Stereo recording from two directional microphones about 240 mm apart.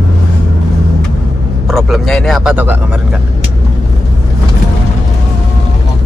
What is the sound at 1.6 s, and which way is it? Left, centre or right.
Vehicle, centre.